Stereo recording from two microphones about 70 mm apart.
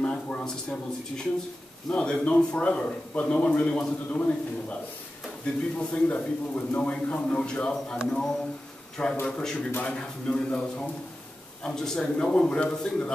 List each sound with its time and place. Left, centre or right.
0.0 s a man's voice: centre
9.7 s speech: left
9.9 s a man's voice: centre